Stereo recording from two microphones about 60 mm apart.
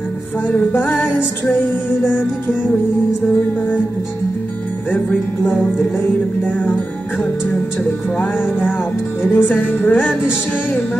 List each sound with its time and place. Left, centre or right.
0.7 s music: left
4.9 s music: left
6.4 s music: left
8.2 s music: left